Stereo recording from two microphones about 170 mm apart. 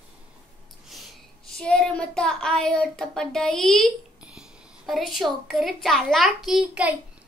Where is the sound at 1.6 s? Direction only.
5° left (ahead or behind).